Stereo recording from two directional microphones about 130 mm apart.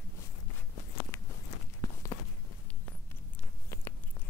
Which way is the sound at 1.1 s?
20° left (ahead or behind).